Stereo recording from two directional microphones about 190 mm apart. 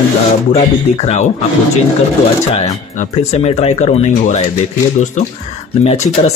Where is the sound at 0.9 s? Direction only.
35° left (ahead or behind).